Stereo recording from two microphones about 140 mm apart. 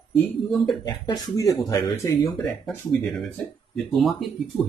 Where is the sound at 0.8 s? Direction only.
30° left (ahead or behind).